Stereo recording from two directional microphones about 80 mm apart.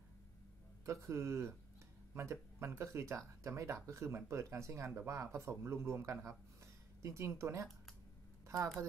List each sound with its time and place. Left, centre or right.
0.8 s speech: right